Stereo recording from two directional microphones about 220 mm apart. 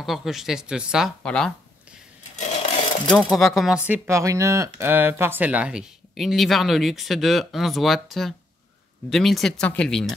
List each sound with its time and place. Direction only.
0.0 s speech: centre (ahead or behind)
3.1 s speech: centre (ahead or behind)